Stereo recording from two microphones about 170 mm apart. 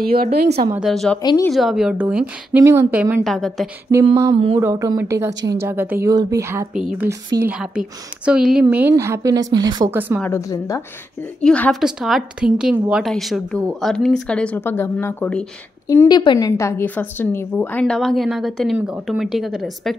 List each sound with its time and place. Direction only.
0.0 s a woman's voice: 60° right (ahead or behind)
0.7 s a woman's voice: centre (ahead or behind)
3.3 s a woman's voice: centre (ahead or behind)
4.6 s a woman's voice: 20° right (ahead or behind)
6.7 s a woman's voice: 5° right (ahead or behind); by 9.8 s 25° right (ahead or behind)
9.8 s a woman's voice: 10° right (ahead or behind)
10.2 s a woman's voice: 15° left (ahead or behind)
11.4 s a woman's voice: 5° left (ahead or behind)
15.9 s a woman's voice: 20° left (ahead or behind); by 20.0 s centre (ahead or behind)